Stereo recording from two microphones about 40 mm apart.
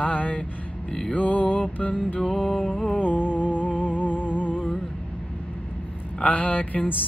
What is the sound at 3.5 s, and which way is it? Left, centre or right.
Music, left.